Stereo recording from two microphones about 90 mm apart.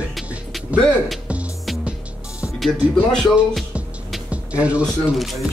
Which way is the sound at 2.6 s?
5° left (ahead or behind).